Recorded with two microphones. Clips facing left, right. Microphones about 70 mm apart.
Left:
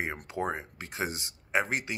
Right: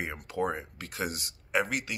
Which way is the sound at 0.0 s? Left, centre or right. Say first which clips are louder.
Right 1 dB; left.